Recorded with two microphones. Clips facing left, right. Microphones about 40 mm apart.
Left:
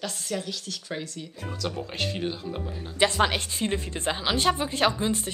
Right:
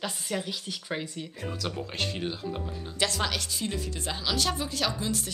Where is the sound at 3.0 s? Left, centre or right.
Left.